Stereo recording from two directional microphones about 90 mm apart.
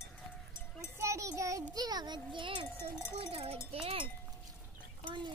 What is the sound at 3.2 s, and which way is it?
Speech, 90° right.